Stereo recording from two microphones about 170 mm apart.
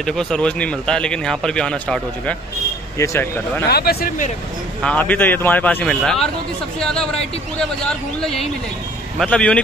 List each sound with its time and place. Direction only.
0.0 s speech: 5° left (ahead or behind)
3.0 s speech: 15° left (ahead or behind)
3.6 s speech: 65° left (ahead or behind)
4.8 s speech: 10° left (ahead or behind)
8.2 s speech: 5° left (ahead or behind)